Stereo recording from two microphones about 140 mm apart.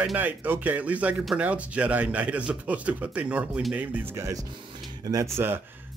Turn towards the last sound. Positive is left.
turn(degrees=-20)  # may be behind; listen again after turning